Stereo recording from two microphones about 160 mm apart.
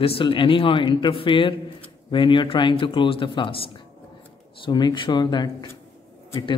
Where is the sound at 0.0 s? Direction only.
35° left (ahead or behind).